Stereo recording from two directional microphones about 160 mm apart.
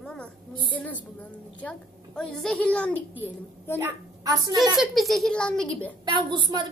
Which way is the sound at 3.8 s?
20° right (ahead or behind).